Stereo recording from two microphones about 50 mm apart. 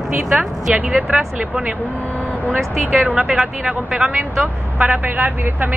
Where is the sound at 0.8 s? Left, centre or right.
Right.